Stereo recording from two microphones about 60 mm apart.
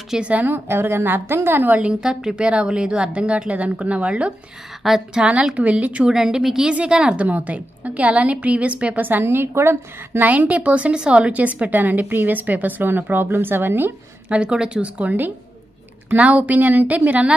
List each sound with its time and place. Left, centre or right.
0.2 s a woman's voice: right
0.7 s a woman's voice: right
1.8 s a woman's voice: centre
4.8 s a woman's voice: centre
6.0 s a woman's voice: centre; by 9.2 s right
9.2 s a woman's voice: right
10.2 s a woman's voice: right
14.3 s a woman's voice: centre